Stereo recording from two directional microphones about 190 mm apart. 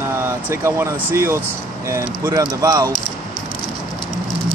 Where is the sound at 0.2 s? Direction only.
10° right (ahead or behind).